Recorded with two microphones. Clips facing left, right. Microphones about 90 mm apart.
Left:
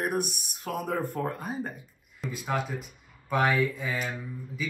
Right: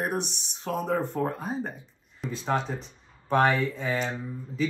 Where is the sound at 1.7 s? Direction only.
5° left (ahead or behind).